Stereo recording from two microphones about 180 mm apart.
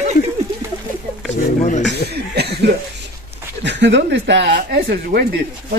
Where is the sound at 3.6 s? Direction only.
75° right (ahead or behind).